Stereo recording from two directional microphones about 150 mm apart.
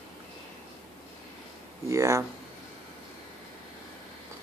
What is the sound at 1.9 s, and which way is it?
Speech, 20° right (ahead or behind).